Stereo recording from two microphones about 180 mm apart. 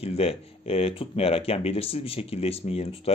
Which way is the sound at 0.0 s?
35° left (ahead or behind).